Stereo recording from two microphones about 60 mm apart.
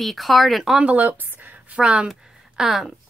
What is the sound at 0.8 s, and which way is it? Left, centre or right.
A woman's voice, right.